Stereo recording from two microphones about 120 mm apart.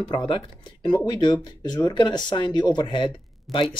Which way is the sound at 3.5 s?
Centre (ahead or behind).